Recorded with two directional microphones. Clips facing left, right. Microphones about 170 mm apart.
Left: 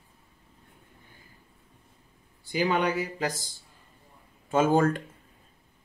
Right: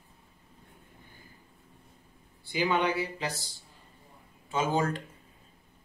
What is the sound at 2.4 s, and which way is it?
Speech, 40° left (ahead or behind).